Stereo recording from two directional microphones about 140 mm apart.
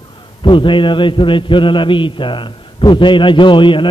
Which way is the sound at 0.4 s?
35° left (ahead or behind).